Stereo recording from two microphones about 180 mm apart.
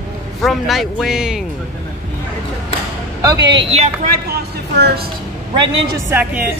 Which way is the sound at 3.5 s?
35° right (ahead or behind).